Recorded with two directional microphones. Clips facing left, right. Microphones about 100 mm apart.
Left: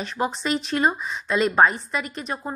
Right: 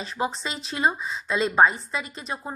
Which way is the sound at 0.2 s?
25° right (ahead or behind).